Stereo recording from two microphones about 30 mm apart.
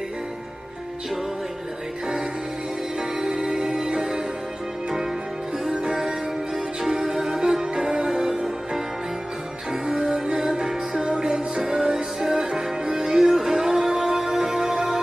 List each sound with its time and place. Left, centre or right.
3.0 s music: centre
5.7 s music: right
6.8 s music: centre
8.3 s music: centre
9.7 s music: right